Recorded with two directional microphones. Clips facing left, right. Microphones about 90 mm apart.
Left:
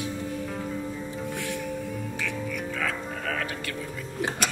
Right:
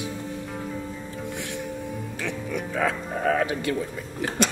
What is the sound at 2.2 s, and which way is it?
Music, 25° right (ahead or behind).